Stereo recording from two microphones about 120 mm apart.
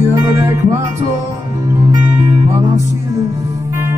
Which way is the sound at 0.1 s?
25° right (ahead or behind).